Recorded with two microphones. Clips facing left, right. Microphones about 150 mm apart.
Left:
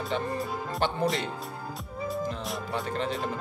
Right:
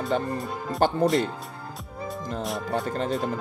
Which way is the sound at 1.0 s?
Centre (ahead or behind).